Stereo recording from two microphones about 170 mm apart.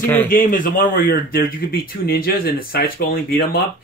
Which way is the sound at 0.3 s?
55° left (ahead or behind).